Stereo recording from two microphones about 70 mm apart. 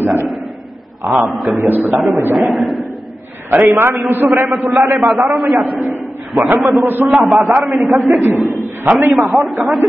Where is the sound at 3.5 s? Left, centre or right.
Right.